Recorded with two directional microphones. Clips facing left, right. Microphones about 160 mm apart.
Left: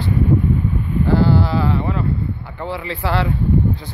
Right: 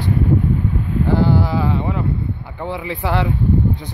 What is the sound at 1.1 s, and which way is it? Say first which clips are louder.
Speech: left 1 dB; 15° right (ahead or behind).